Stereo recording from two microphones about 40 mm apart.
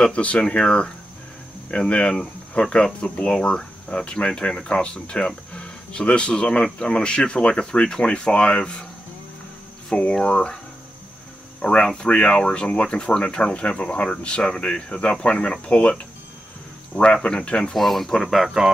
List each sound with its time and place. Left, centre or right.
0.0 s speech: left
9.9 s speech: left
11.8 s speech: left
17.7 s speech: centre